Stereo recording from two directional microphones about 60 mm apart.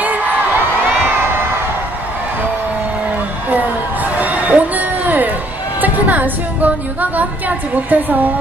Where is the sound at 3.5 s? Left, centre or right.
Right.